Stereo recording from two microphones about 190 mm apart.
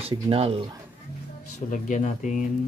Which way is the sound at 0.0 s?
30° right (ahead or behind).